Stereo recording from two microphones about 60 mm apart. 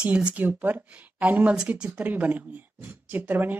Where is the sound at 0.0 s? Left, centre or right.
Right.